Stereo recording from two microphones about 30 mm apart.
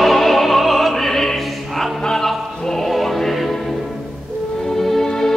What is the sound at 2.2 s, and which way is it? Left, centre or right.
Opera, centre.